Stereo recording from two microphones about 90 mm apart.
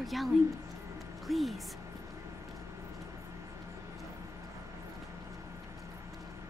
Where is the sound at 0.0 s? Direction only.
Centre (ahead or behind).